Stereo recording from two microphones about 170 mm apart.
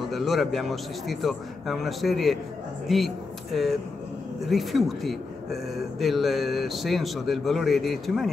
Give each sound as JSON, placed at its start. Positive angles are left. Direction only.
{"t": 0.1, "sound": "speech", "side_deg": 0}